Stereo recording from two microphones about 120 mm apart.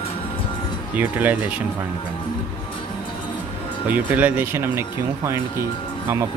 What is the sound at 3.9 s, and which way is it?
Speech, 15° right (ahead or behind).